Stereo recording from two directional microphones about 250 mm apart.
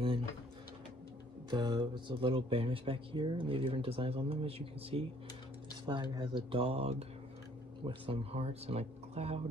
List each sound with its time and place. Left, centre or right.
1.5 s speech: centre